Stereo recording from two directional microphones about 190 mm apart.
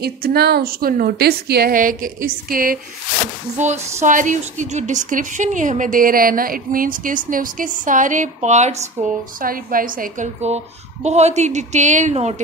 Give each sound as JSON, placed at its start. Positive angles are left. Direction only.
{"t": 0.0, "sound": "a woman's voice", "side_deg": -55}